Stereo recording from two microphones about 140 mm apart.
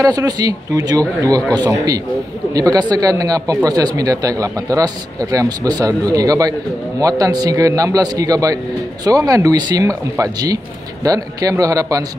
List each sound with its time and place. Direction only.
0.0 s speech: 25° right (ahead or behind)